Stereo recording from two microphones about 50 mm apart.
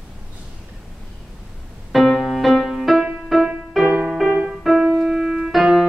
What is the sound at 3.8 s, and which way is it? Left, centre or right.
Music, centre.